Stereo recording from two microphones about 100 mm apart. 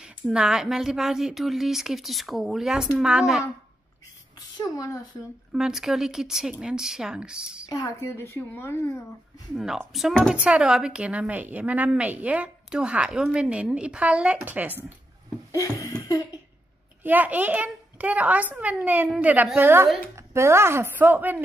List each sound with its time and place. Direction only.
0.0 s a woman's voice: 10° right (ahead or behind)
4.4 s a child's voice: 35° left (ahead or behind)
5.5 s a woman's voice: 5° right (ahead or behind)
7.7 s speech: 30° left (ahead or behind)
9.6 s speech: centre (ahead or behind); by 14.8 s 15° right (ahead or behind)
15.5 s a sound: 30° left (ahead or behind)
17.0 s a woman's voice: 15° right (ahead or behind)